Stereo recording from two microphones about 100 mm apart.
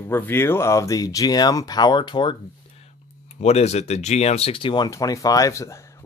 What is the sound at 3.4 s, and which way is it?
Speech, 90° left.